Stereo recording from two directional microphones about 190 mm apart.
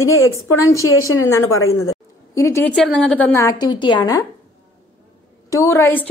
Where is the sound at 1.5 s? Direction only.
90° left.